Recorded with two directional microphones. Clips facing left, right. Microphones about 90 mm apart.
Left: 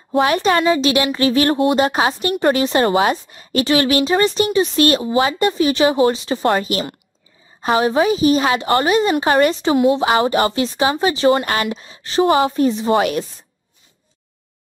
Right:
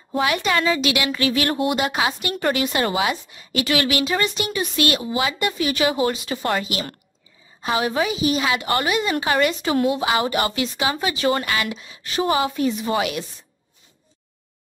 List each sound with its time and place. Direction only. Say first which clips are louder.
0.2 s a woman's voice: left 5 dB; 35° left (ahead or behind)